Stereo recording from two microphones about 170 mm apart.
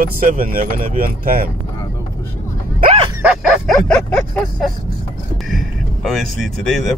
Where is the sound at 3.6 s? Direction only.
5° left (ahead or behind).